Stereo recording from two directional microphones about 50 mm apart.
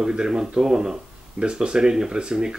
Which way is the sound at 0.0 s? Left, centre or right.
Centre.